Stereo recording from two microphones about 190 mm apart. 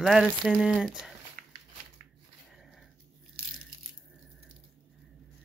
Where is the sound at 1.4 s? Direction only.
45° right (ahead or behind).